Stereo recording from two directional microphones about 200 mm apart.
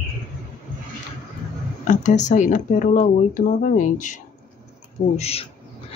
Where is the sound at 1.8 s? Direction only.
40° left (ahead or behind).